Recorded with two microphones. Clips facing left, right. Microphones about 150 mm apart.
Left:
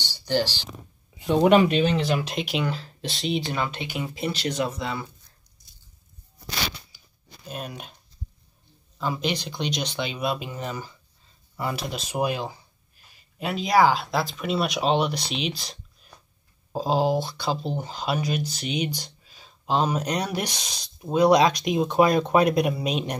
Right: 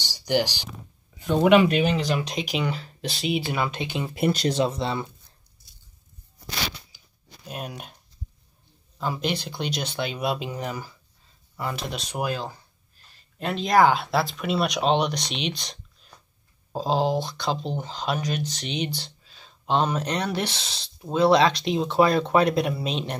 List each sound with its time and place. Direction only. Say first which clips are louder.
0.0 s a sound: right 1 dB; 15° right (ahead or behind)
1.4 s speech: even; 40° left (ahead or behind)
2.0 s speech: left 1 dB; 5° left (ahead or behind)
3.7 s speech: right 2 dB; 20° right (ahead or behind)
4.1 s speech: right 6 dB; 50° right (ahead or behind)
4.5 s speech: right 3 dB; 30° right (ahead or behind)
7.4 s speech: even; 10° right (ahead or behind)
8.9 s a sound: left 1 dB; 10° right (ahead or behind)
9.4 s speech: left 1 dB; 10° right (ahead or behind)
11.5 s speech: left 1 dB; centre (ahead or behind)
12.2 s speech: left 3 dB; 15° left (ahead or behind)